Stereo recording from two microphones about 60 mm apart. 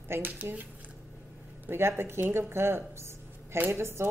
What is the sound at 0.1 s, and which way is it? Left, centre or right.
Speech, right.